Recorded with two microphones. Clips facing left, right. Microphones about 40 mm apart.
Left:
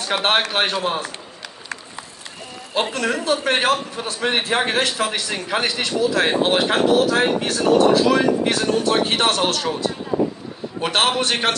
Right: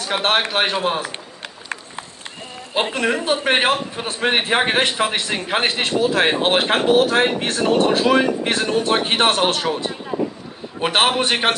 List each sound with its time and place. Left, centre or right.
0.0 s a man's voice: centre
0.7 s a man's voice: centre
2.7 s a man's voice: right